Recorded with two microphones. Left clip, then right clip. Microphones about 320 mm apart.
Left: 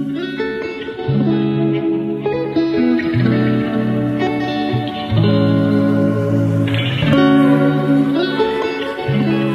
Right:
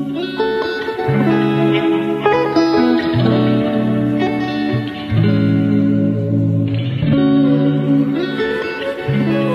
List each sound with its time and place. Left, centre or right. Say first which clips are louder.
1.1 s music: right 1 dB; right
2.3 s music: right 3 dB; centre
5.2 s music: left 2 dB; centre
7.1 s music: left 2 dB; left
9.2 s music: right 1 dB; centre